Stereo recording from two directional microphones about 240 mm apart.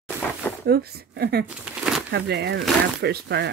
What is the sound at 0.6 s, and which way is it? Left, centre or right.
Speech, right.